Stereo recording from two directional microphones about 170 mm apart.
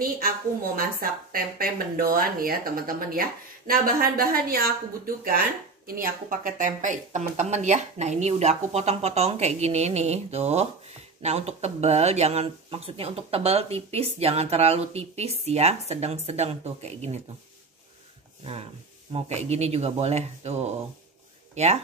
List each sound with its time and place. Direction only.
1.3 s speech: 60° right (ahead or behind); by 17.2 s 40° right (ahead or behind)
18.4 s speech: 35° right (ahead or behind)